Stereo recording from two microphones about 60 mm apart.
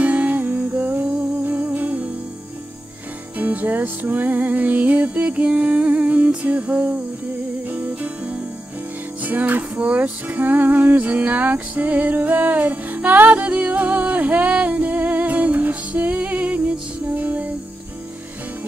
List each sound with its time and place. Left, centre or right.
0.0 s music: right
3.3 s music: right